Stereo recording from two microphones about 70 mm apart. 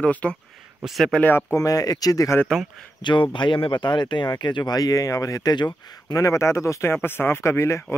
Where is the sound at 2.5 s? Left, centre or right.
Centre.